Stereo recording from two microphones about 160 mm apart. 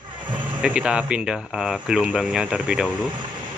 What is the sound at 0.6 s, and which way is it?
Speech, 5° right (ahead or behind).